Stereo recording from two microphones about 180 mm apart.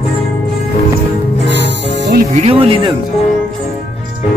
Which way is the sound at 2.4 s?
30° right (ahead or behind).